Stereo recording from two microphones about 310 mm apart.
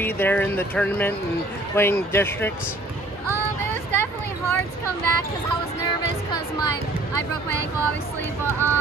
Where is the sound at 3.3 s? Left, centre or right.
Right.